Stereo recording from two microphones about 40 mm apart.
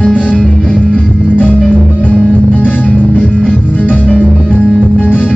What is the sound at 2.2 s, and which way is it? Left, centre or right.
Music, left.